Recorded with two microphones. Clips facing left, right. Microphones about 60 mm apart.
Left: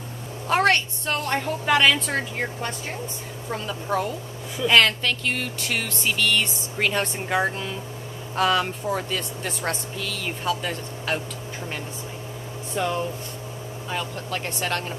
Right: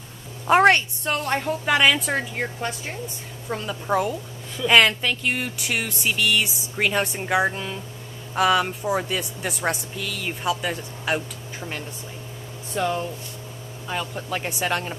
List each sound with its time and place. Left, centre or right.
0.5 s a woman's voice: right
1.0 s speech: centre
12.7 s speech: centre